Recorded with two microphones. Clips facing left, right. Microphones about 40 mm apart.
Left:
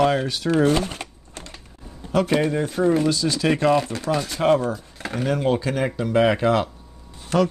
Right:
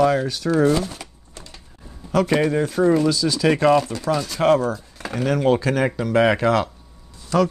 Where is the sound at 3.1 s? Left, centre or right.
Centre.